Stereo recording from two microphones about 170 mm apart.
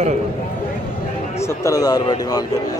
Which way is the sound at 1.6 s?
20° left (ahead or behind).